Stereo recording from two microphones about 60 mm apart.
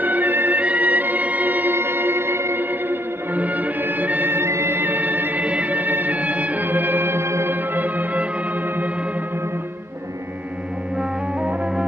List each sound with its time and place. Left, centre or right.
0.0 s music: right
7.7 s music: right
11.0 s music: centre